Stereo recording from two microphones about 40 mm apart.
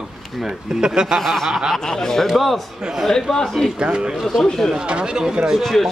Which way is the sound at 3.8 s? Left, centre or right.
Right.